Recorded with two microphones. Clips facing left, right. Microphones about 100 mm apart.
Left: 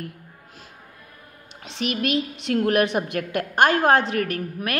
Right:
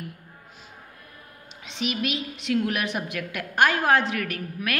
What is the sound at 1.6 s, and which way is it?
A woman's voice, 40° left (ahead or behind).